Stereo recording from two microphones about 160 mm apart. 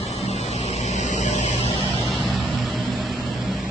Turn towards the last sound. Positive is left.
turn(degrees=0)  # may be behind; listen again after turning